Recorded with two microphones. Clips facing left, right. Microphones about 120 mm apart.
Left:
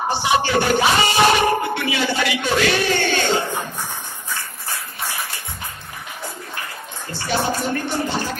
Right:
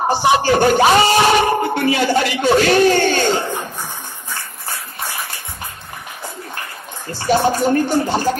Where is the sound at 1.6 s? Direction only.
45° right (ahead or behind).